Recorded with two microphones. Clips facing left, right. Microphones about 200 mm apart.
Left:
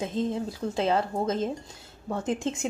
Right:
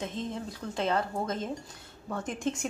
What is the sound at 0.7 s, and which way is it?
A woman's voice, 30° left (ahead or behind).